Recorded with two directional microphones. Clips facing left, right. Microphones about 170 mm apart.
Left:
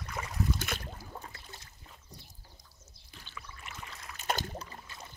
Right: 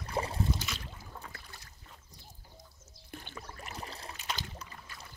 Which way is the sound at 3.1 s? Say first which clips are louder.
Right 5 dB; 50° right (ahead or behind).